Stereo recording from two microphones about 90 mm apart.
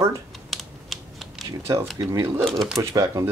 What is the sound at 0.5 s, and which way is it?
Typing, centre (ahead or behind).